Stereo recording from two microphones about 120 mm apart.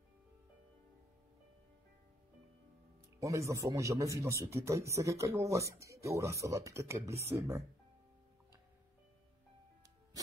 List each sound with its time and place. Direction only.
3.2 s a man's voice: 25° right (ahead or behind)